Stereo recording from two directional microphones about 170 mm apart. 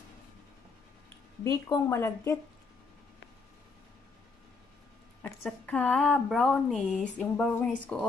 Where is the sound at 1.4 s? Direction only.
15° left (ahead or behind).